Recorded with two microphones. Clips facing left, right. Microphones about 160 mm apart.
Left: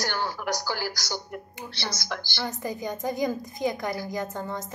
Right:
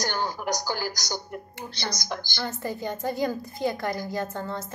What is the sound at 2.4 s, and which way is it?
A woman's voice, 15° left (ahead or behind).